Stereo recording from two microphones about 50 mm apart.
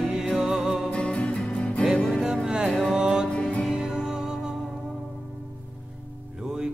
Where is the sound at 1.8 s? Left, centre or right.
Centre.